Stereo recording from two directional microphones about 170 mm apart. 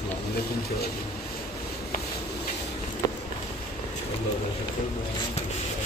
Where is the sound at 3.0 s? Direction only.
25° left (ahead or behind).